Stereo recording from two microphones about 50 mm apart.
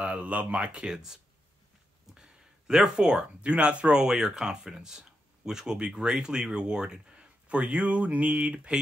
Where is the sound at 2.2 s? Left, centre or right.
Centre.